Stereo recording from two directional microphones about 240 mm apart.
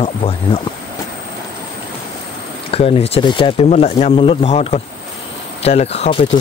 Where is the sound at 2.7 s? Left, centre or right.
Left.